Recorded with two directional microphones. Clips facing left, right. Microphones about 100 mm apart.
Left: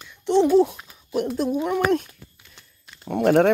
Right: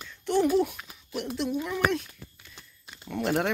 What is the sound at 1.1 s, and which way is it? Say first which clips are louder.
Speech: left 7 dB; 45° left (ahead or behind).